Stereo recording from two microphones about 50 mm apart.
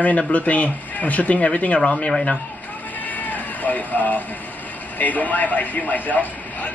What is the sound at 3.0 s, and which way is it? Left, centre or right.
Sheep, left.